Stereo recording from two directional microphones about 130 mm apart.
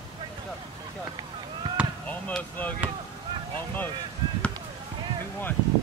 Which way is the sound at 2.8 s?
10° right (ahead or behind).